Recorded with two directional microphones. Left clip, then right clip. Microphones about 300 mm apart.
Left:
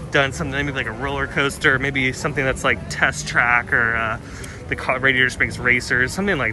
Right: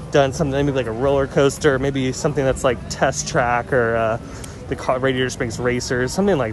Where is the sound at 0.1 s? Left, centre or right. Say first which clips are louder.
Right 2 dB; centre.